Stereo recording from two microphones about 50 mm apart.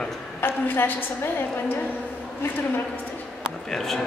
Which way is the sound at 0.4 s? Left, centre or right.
Left.